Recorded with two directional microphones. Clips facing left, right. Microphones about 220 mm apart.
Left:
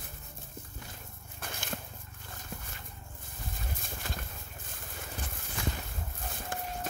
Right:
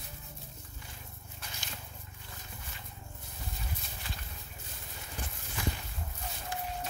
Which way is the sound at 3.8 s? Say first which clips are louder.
Left 5 dB; 45° left (ahead or behind).